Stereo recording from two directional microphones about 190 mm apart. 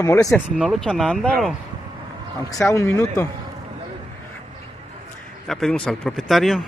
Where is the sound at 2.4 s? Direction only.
15° left (ahead or behind).